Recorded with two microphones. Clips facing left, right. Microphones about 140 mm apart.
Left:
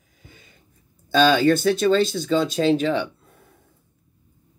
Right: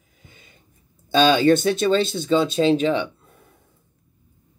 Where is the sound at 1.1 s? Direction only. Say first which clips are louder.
Right 1 dB; 20° right (ahead or behind).